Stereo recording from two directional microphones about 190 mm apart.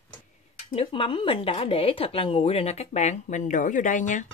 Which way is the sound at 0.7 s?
30° left (ahead or behind).